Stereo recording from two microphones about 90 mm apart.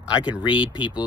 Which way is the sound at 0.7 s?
65° left (ahead or behind).